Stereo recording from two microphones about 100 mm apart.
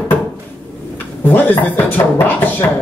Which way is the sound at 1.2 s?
20° left (ahead or behind).